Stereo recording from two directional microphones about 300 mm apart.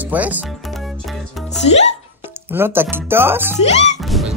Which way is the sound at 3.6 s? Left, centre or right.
Left.